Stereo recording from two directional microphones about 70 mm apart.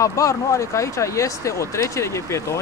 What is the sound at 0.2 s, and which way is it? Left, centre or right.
Speech, left.